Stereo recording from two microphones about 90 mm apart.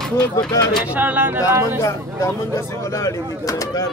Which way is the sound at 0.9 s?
20° right (ahead or behind).